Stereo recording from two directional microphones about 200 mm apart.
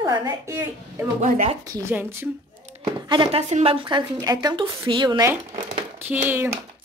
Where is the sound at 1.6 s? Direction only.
15° right (ahead or behind).